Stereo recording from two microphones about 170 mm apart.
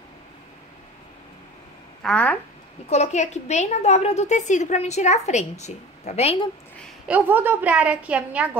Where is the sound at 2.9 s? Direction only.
40° left (ahead or behind).